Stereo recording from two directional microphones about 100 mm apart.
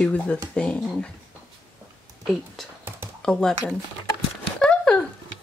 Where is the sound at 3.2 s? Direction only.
5° left (ahead or behind).